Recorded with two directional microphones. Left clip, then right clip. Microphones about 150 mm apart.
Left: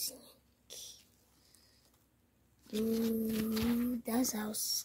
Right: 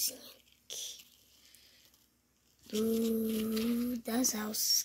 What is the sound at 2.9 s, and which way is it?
Speech, 10° left (ahead or behind).